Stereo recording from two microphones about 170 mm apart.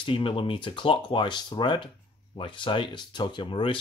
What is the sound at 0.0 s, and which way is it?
Speech, 30° left (ahead or behind).